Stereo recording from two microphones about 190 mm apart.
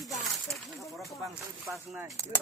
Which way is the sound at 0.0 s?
Centre (ahead or behind).